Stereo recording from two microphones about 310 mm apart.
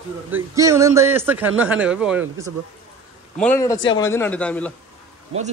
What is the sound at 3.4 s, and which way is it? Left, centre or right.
A man's voice, centre.